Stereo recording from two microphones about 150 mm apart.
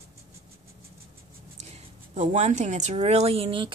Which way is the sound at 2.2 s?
50° right (ahead or behind).